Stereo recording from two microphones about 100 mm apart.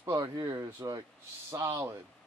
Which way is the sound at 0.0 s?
35° right (ahead or behind).